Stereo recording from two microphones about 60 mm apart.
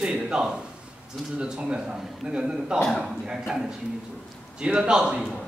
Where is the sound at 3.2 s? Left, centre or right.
Centre.